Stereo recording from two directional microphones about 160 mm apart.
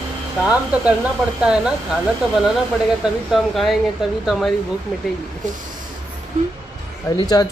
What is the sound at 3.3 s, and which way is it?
Speech, centre (ahead or behind).